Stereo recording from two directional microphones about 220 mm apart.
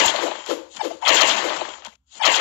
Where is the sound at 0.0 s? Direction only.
55° left (ahead or behind).